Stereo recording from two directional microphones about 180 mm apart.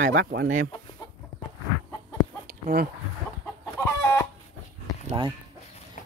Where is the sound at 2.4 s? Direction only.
55° right (ahead or behind).